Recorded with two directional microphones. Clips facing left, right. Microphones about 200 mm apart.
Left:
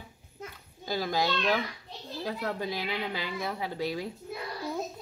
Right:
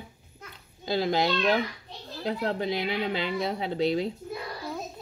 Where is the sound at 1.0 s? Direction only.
20° right (ahead or behind).